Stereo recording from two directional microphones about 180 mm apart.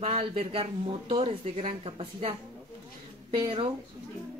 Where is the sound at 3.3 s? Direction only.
25° right (ahead or behind).